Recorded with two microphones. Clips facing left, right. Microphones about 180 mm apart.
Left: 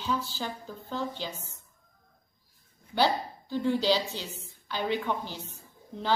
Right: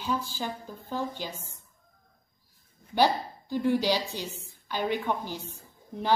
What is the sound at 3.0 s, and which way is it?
A woman's voice, 15° right (ahead or behind).